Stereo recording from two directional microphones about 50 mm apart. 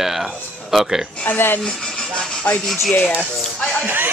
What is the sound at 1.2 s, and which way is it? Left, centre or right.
Speech, left.